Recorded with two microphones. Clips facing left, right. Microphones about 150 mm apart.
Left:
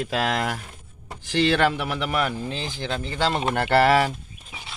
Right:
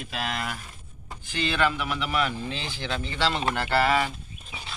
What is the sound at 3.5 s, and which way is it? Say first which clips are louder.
Speech: left 8 dB; 65° left (ahead or behind).